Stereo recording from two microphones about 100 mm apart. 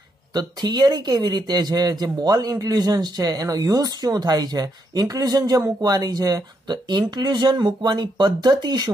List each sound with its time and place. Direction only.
0.3 s a man's voice: 45° right (ahead or behind)